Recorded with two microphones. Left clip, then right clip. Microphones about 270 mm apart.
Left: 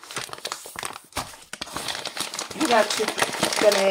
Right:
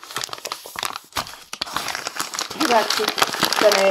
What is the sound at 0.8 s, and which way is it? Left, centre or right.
Crumpling, right.